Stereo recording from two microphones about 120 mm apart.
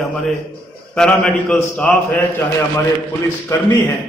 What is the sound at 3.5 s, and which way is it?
Speech, 25° left (ahead or behind).